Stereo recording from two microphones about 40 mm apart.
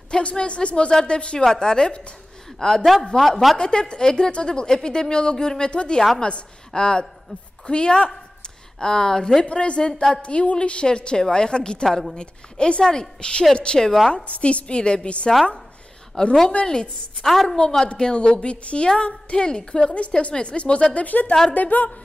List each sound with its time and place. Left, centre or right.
0.1 s a woman's voice: left
2.6 s speech: centre
3.5 s a woman's voice: left
17.3 s speech: centre
17.6 s a woman's voice: centre
20.9 s a sound: left